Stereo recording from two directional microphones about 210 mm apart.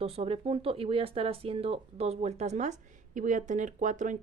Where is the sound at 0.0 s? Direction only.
30° right (ahead or behind).